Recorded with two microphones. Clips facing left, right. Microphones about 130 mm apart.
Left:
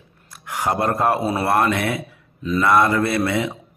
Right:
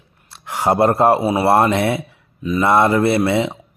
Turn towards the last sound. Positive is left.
turn(degrees=-25)  # may be behind; listen again after turning